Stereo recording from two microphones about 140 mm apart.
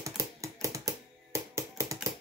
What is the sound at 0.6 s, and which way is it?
Typewriter, 25° right (ahead or behind).